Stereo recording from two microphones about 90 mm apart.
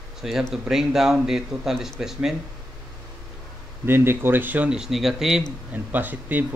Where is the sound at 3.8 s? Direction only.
25° right (ahead or behind).